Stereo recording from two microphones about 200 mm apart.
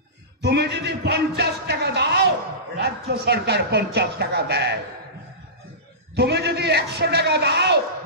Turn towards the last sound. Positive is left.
turn(degrees=-50)  # may be behind; listen again after turning